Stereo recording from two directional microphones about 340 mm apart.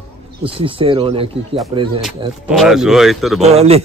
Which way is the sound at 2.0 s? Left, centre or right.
Centre.